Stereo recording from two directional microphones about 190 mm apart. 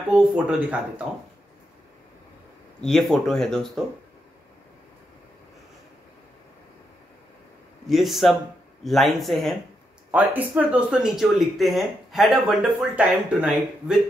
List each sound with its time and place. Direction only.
0.1 s speech: 5° right (ahead or behind)
2.8 s speech: centre (ahead or behind)
7.8 s speech: centre (ahead or behind)